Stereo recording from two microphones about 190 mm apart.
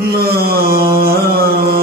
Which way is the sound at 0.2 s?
55° right (ahead or behind).